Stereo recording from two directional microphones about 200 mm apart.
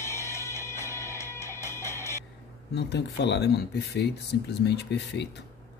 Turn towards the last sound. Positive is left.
turn(degrees=55)  # may be behind; listen again after turning